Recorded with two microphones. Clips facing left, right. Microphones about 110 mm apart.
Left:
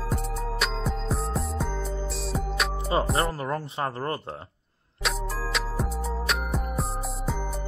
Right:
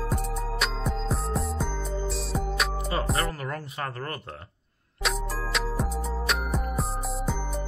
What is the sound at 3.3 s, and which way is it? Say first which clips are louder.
Speech: left 4 dB; 30° left (ahead or behind).